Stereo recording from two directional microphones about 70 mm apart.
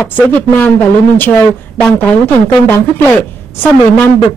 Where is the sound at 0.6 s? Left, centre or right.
Left.